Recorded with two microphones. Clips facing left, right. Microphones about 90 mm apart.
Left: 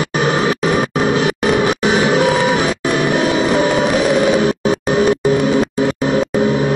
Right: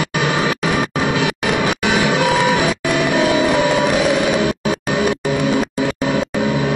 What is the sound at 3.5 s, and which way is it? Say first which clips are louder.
Music: left 1 dB; 30° left (ahead or behind).